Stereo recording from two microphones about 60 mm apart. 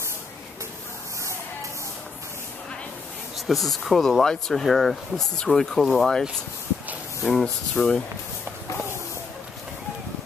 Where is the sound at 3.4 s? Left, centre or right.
Centre.